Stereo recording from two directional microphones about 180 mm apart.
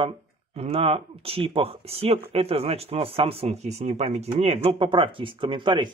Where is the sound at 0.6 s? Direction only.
35° right (ahead or behind).